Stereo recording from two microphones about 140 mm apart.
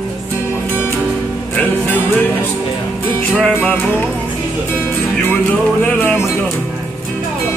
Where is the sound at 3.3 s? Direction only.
10° left (ahead or behind).